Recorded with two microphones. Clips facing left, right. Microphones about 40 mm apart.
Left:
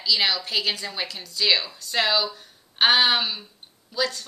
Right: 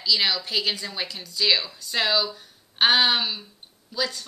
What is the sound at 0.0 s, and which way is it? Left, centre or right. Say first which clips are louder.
A woman's voice: even; centre.